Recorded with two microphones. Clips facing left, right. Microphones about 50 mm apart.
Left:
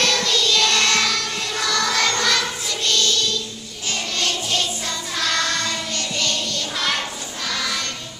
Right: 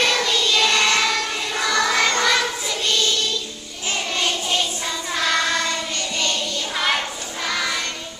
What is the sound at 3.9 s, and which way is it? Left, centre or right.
Music, centre.